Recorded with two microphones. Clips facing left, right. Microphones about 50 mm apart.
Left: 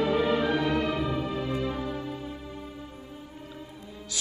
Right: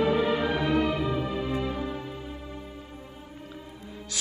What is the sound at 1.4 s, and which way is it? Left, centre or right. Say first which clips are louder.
Music: even; centre.